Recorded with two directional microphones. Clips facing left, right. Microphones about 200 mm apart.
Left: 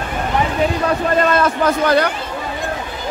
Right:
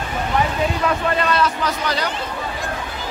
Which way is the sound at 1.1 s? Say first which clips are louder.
Left 4 dB; 45° left (ahead or behind).